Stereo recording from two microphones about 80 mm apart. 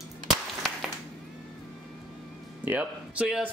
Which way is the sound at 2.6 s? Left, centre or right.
Centre.